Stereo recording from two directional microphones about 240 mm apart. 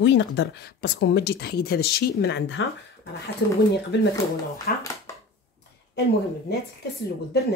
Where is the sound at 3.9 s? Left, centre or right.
Left.